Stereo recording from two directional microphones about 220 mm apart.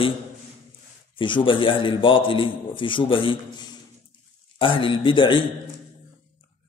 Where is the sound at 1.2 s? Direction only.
25° left (ahead or behind).